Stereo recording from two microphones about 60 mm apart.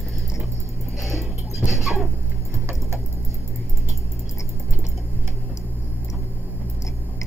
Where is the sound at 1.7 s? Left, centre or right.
Centre.